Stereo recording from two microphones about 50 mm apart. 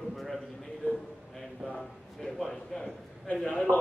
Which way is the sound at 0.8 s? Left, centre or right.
Left.